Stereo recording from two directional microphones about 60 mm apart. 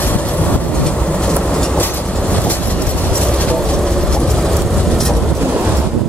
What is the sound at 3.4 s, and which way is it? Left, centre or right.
Vehicle, left.